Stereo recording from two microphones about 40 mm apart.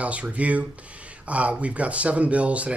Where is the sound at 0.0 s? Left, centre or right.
Right.